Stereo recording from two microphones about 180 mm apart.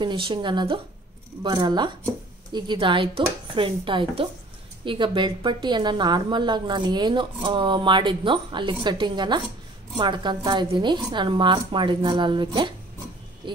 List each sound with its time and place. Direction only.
0.0 s a woman's voice: 30° right (ahead or behind)